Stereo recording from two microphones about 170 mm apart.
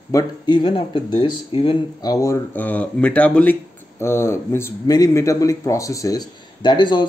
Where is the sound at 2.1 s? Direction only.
15° left (ahead or behind).